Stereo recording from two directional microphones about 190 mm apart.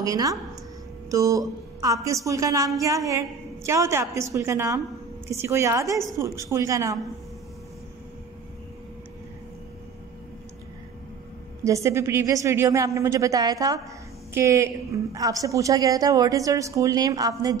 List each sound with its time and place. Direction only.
0.0 s a woman's voice: 20° right (ahead or behind)
11.6 s a woman's voice: 15° right (ahead or behind)